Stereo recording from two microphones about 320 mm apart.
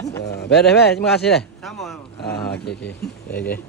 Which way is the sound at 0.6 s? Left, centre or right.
Left.